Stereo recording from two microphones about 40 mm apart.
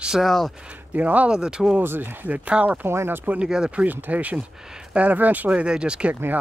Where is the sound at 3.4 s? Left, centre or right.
Centre.